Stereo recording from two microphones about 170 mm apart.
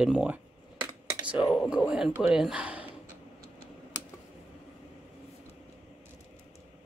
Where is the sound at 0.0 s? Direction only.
5° right (ahead or behind).